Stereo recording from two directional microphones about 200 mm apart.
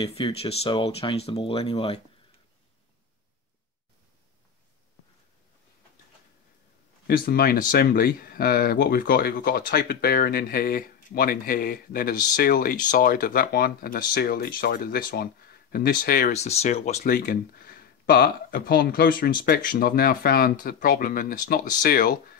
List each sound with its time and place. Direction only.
0.0 s speech: 25° left (ahead or behind)
7.1 s speech: 50° left (ahead or behind)
16.3 s speech: 35° left (ahead or behind)